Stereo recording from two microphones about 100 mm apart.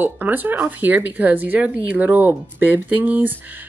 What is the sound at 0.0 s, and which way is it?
Speech, 20° right (ahead or behind).